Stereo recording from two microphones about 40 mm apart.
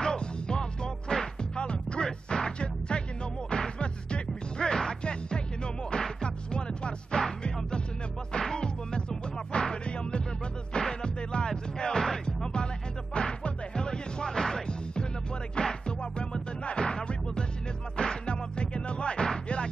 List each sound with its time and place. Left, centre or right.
0.0 s music: left